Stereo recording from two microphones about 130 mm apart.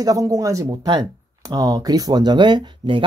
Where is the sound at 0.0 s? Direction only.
25° right (ahead or behind).